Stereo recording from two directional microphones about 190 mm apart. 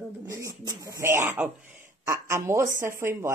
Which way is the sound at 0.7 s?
20° right (ahead or behind).